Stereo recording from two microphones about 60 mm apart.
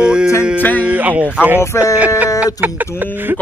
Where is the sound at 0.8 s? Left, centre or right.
Right.